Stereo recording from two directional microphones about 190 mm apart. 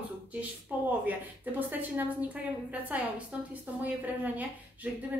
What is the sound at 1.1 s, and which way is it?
A woman's voice, 10° right (ahead or behind).